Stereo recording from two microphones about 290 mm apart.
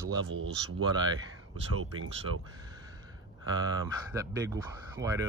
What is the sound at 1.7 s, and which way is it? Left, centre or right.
Speech, right.